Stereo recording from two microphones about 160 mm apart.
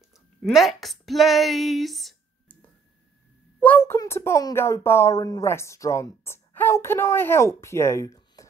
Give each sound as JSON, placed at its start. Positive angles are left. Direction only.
{"t": 0.4, "sound": "a woman's voice", "side_deg": 0}
{"t": 3.5, "sound": "speech", "side_deg": 10}